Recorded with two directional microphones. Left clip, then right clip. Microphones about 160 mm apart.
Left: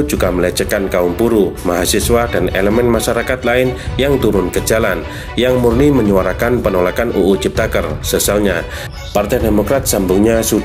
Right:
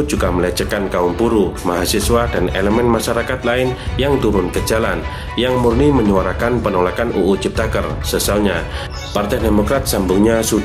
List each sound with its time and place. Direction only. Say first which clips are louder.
0.0 s speech: left 2 dB; 20° left (ahead or behind)